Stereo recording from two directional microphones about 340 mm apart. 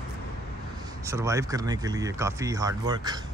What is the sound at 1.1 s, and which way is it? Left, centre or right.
Speech, centre.